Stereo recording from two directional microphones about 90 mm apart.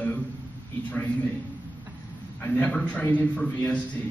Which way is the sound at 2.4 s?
15° left (ahead or behind).